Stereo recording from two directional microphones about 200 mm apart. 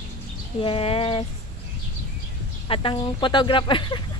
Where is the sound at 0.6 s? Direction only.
25° left (ahead or behind).